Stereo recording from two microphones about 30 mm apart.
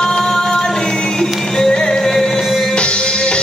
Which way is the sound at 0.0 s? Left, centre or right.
Centre.